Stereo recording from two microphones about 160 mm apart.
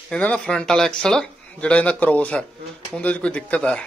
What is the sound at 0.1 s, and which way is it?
A man's voice, 5° left (ahead or behind).